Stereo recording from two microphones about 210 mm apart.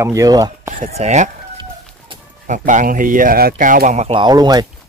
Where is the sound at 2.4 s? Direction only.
35° right (ahead or behind); by 4.6 s 20° right (ahead or behind).